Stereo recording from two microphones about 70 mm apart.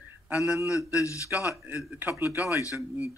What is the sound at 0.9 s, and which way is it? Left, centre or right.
Speech, left.